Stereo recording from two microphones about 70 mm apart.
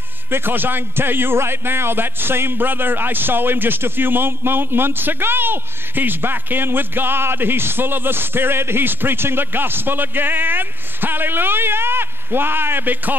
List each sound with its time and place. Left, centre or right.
0.3 s a man's voice: right